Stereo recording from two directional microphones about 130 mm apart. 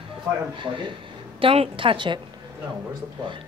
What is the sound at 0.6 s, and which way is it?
A woman's voice, 40° right (ahead or behind).